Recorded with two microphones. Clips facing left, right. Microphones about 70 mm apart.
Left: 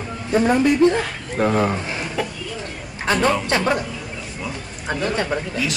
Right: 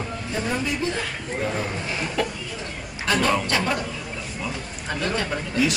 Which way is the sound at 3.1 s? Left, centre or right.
Left.